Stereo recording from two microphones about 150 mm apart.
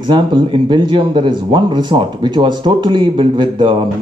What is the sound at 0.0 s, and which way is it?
Speech, 30° right (ahead or behind).